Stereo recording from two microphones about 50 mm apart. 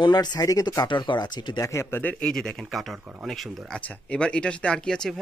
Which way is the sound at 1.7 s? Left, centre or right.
Left.